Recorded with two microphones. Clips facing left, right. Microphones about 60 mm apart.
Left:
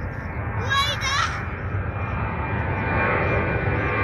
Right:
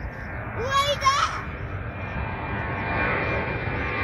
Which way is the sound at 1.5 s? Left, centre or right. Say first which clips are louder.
Left 4 dB; centre.